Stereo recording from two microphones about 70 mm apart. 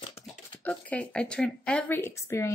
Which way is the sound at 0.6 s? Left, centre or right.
Centre.